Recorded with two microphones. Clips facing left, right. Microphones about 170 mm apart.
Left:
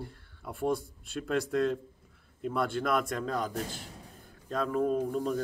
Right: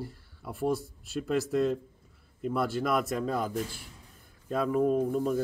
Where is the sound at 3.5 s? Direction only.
45° left (ahead or behind).